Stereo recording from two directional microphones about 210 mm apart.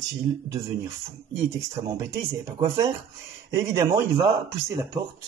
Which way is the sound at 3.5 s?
15° right (ahead or behind).